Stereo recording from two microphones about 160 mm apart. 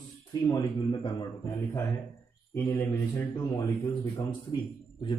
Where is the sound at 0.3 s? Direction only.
25° left (ahead or behind).